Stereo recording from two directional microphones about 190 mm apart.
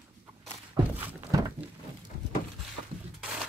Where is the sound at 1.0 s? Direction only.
20° right (ahead or behind).